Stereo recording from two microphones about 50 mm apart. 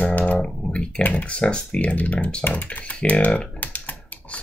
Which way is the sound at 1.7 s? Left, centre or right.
Left.